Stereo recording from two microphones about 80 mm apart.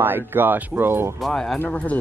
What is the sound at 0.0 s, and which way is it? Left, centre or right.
Speech, right.